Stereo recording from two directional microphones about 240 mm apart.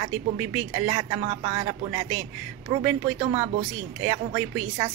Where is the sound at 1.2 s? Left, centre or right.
Right.